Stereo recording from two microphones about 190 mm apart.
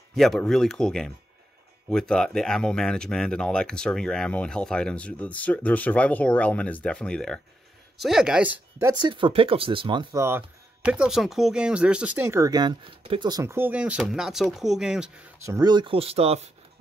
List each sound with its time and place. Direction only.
0.1 s speech: centre (ahead or behind); by 9.1 s 15° right (ahead or behind)
9.1 s speech: 25° right (ahead or behind); by 15.0 s 5° right (ahead or behind)
15.4 s speech: 20° right (ahead or behind)